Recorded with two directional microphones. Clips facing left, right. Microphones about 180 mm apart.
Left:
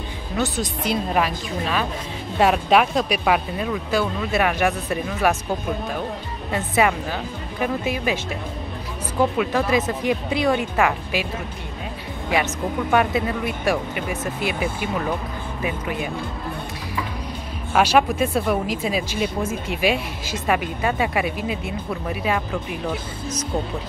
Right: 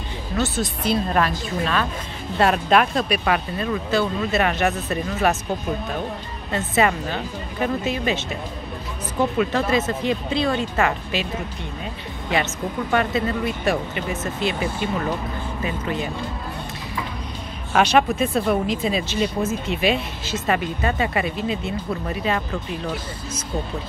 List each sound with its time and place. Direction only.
0.4 s speech: 15° left (ahead or behind)
2.3 s speech: 10° left (ahead or behind)
6.5 s speech: 10° left (ahead or behind)
9.4 s speech: 10° left (ahead or behind)
12.9 s speech: 10° left (ahead or behind)
17.7 s speech: 10° left (ahead or behind)